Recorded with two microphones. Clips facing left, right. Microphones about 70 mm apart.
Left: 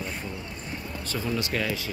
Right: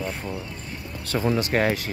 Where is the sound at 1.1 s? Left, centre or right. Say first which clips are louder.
Right 6 dB; right.